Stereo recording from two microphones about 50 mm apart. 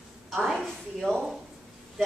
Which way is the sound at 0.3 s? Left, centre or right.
Centre.